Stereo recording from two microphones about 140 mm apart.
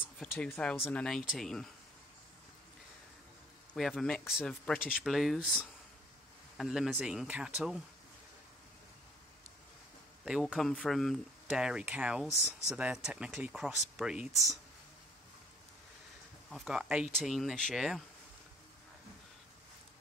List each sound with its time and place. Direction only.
0.2 s speech: 5° left (ahead or behind)
3.7 s speech: centre (ahead or behind)
10.2 s speech: 5° right (ahead or behind)
12.3 s speech: 20° left (ahead or behind)
12.6 s speech: 5° right (ahead or behind)
16.4 s speech: 5° right (ahead or behind)